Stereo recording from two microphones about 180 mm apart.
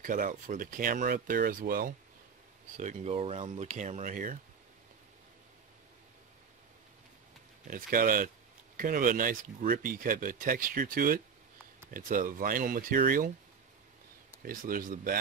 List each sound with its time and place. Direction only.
0.0 s speech: 50° right (ahead or behind)
2.8 s speech: 40° right (ahead or behind)
7.6 s speech: 50° right (ahead or behind)
14.4 s speech: 50° right (ahead or behind)